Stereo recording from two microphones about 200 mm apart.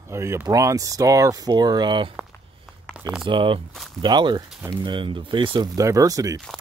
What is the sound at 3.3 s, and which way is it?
Speech, 25° right (ahead or behind).